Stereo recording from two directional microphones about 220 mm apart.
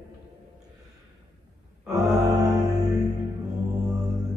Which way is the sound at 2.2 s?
15° right (ahead or behind).